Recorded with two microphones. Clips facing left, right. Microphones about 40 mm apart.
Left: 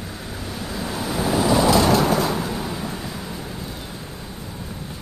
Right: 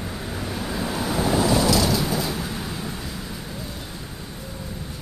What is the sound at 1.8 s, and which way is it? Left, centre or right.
Vehicle, left.